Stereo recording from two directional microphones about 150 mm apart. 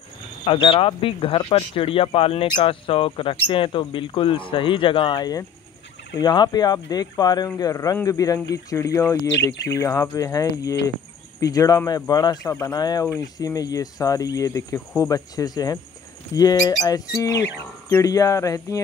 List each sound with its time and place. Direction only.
0.5 s speech: 35° left (ahead or behind)